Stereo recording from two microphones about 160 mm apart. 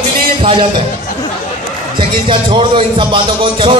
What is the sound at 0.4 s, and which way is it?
Speech, 30° right (ahead or behind).